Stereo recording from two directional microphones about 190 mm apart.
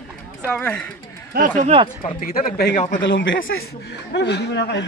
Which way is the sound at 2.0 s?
45° left (ahead or behind).